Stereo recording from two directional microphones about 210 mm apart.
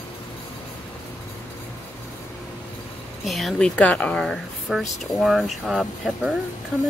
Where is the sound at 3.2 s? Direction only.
Centre (ahead or behind).